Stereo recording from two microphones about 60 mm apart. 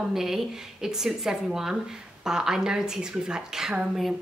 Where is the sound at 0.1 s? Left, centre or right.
Centre.